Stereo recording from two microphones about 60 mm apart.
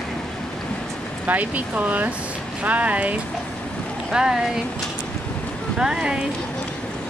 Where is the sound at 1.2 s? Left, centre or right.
Right.